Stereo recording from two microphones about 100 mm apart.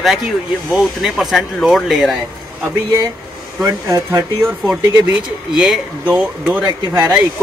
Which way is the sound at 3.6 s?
30° right (ahead or behind).